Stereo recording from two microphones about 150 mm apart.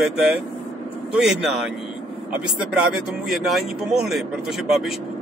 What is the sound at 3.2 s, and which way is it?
Speech, centre (ahead or behind).